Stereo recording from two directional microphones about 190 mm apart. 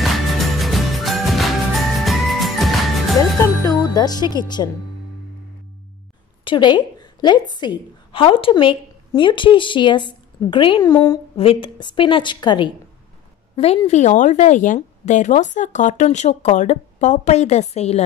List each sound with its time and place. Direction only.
0.0 s music: centre (ahead or behind)
3.6 s music: 20° left (ahead or behind)
6.4 s a woman's voice: 25° left (ahead or behind)